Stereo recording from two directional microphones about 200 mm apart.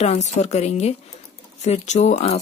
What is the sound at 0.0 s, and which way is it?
Speech, 35° left (ahead or behind).